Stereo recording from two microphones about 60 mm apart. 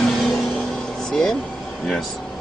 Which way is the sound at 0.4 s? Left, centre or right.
Left.